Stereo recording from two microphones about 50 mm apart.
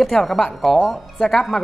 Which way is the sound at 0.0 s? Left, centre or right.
Centre.